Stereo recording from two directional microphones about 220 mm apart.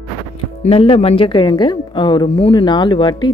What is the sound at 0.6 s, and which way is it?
A woman's voice, 25° left (ahead or behind).